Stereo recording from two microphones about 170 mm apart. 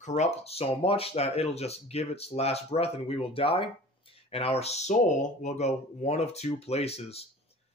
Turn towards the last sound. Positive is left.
turn(degrees=35)  # may be behind; listen again after turning